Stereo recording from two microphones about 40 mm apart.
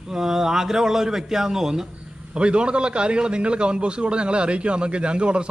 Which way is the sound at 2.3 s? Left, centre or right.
Right.